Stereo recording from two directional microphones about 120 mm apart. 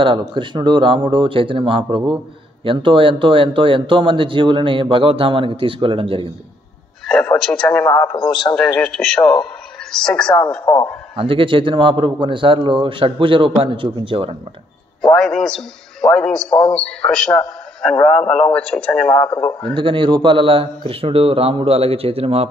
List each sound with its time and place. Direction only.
0.0 s speech: 40° right (ahead or behind)
7.1 s a man's voice: 5° left (ahead or behind)
8.2 s a man's voice: 40° left (ahead or behind)
8.5 s a man's voice: 5° left (ahead or behind)
11.1 s speech: 45° right (ahead or behind)
15.0 s a man's voice: 5° left (ahead or behind)
19.7 s speech: 45° right (ahead or behind)